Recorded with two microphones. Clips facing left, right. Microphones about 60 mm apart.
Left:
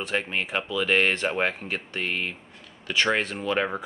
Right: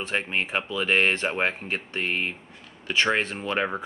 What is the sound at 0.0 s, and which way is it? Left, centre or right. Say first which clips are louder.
Speech: even; right.